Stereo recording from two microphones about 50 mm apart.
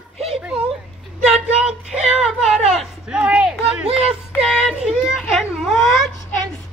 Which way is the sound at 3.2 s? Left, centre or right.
Right.